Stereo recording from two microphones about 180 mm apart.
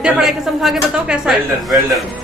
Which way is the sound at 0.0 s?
5° right (ahead or behind).